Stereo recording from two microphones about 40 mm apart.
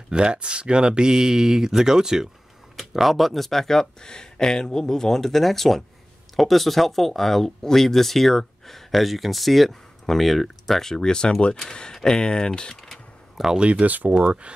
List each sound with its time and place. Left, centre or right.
0.1 s speech: right
2.8 s speech: centre
13.6 s speech: right